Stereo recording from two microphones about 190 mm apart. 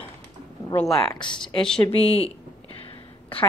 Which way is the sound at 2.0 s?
30° left (ahead or behind).